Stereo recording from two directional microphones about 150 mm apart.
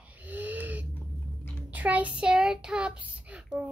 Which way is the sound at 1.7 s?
10° right (ahead or behind).